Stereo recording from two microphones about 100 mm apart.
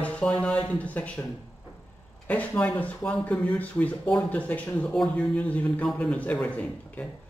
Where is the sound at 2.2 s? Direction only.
15° left (ahead or behind).